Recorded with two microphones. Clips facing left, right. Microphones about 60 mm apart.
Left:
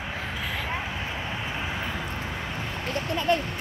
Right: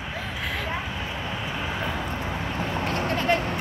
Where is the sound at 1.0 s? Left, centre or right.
Centre.